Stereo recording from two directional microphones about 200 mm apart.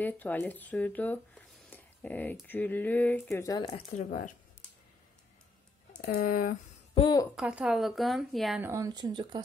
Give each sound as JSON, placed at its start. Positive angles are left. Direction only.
{"t": 0.0, "sound": "speech", "side_deg": 10}
{"t": 3.9, "sound": "speech", "side_deg": 40}
{"t": 5.9, "sound": "speech", "side_deg": 45}
{"t": 6.9, "sound": "a woman's voice", "side_deg": 25}
{"t": 7.3, "sound": "a woman's voice", "side_deg": -5}
{"t": 8.6, "sound": "speech", "side_deg": -15}